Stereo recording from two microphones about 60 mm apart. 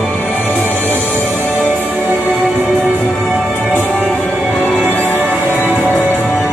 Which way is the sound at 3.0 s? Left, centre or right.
Centre.